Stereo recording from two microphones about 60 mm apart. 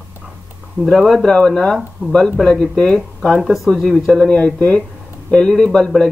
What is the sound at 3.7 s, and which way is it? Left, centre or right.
Speech, centre.